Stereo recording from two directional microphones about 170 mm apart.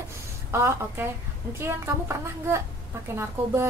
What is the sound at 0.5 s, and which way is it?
A woman's voice, 15° right (ahead or behind).